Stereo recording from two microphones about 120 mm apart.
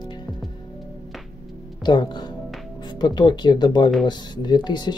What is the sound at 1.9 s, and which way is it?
Speech, 35° left (ahead or behind).